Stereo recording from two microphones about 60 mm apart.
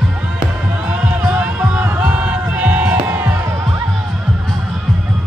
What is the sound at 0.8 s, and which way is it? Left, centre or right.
Music, right.